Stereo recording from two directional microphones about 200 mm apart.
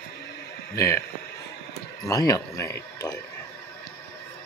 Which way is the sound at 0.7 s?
15° left (ahead or behind).